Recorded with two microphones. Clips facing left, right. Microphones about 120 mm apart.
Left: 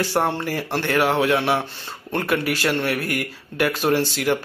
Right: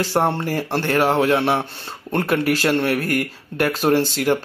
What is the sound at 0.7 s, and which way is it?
Speech, 35° right (ahead or behind).